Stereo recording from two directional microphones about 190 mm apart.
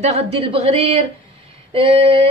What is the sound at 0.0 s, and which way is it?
A woman's voice, 30° right (ahead or behind).